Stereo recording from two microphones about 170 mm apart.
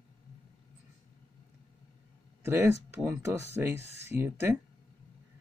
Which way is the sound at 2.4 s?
15° right (ahead or behind).